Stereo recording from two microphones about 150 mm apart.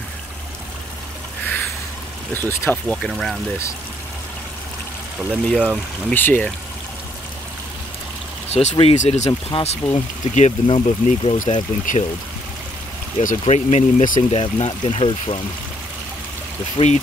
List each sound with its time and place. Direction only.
2.3 s speech: 15° left (ahead or behind)
5.5 s speech: centre (ahead or behind)
6.1 s speech: 10° left (ahead or behind)
8.5 s speech: 40° left (ahead or behind)
9.5 s speech: 40° left (ahead or behind)
10.2 s speech: 50° left (ahead or behind)
11.5 s speech: 60° left (ahead or behind)
13.2 s speech: 55° left (ahead or behind)
14.3 s speech: 40° left (ahead or behind)
16.7 s speech: 45° left (ahead or behind)